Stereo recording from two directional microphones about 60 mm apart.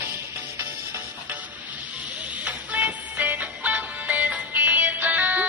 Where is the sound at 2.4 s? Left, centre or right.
Right.